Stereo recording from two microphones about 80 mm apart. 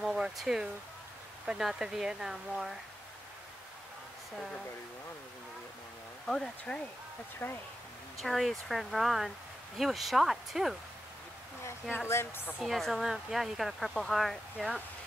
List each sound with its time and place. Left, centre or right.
0.0 s a sound: centre
1.4 s speech: centre
6.2 s speech: centre
7.4 s speech: left
8.2 s speech: centre
12.1 s a woman's voice: left
12.6 s speech: centre